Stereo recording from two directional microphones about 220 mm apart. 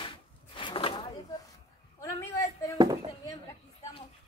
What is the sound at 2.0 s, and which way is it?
Speech, 15° left (ahead or behind).